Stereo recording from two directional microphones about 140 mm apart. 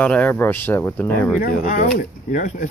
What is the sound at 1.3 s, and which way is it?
Speech, 70° left (ahead or behind).